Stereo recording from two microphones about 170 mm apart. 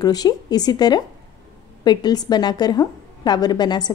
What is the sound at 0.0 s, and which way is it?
A woman's voice, 25° left (ahead or behind).